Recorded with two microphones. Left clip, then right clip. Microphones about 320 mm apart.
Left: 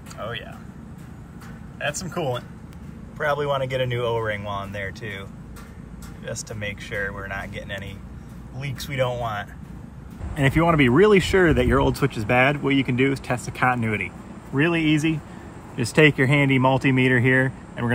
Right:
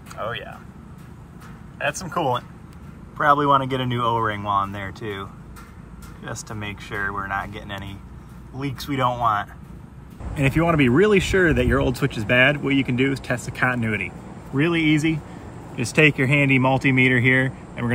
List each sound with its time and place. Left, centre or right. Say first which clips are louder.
0.2 s speech: right 3 dB; centre
1.8 s speech: right 3 dB; centre
10.4 s speech: left 1 dB; centre
14.5 s speech: right 1 dB; centre